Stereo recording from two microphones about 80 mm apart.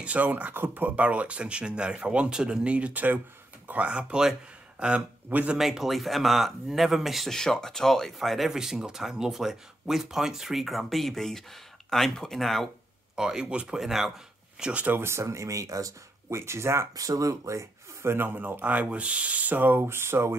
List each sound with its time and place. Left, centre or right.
0.0 s speech: centre
5.6 s speech: centre
13.1 s speech: centre
14.6 s speech: centre
15.0 s speech: right
16.9 s speech: right
18.1 s speech: right